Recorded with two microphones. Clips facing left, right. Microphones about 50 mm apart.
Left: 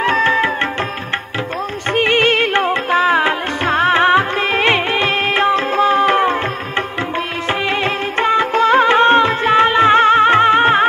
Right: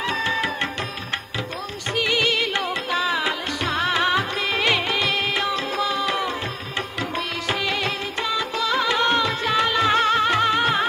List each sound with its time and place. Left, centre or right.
0.0 s music: left
1.9 s music: left
7.4 s music: left